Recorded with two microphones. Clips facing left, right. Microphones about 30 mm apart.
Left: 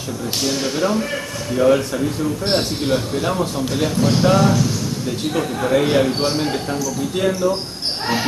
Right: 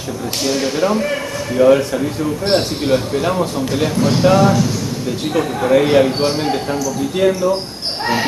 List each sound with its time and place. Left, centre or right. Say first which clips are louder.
0.5 s speech: right 4 dB; centre